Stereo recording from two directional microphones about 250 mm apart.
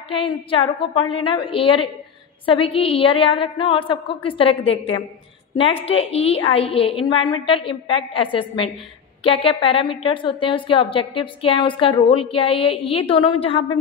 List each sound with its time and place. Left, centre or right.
0.1 s a woman's voice: centre